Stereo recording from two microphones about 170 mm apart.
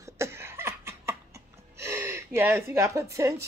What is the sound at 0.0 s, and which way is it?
Cough, 15° right (ahead or behind).